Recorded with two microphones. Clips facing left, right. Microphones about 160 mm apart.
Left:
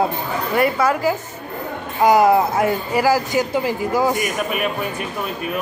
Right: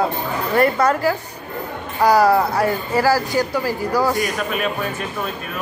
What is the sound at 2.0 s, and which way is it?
Speech, 20° left (ahead or behind).